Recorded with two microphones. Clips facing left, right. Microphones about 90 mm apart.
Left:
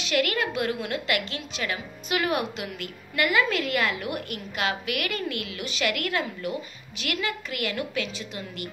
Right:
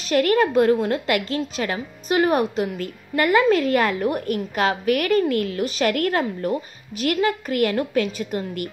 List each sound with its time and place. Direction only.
0.0 s a woman's voice: 40° right (ahead or behind)